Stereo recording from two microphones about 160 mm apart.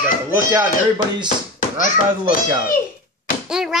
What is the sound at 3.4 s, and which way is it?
Speech, 5° right (ahead or behind).